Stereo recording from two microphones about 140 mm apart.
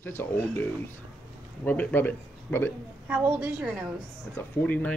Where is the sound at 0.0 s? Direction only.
15° left (ahead or behind).